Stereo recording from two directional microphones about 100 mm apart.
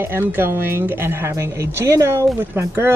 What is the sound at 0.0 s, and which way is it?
Speech, 25° right (ahead or behind).